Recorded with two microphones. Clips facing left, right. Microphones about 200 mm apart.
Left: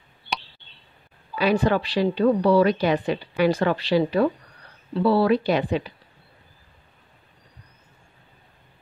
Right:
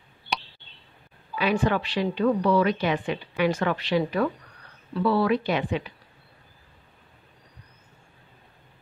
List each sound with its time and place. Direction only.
1.4 s a woman's voice: 35° left (ahead or behind)